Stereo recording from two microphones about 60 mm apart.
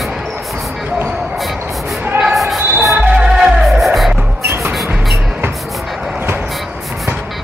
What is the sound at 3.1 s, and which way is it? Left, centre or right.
Music, centre.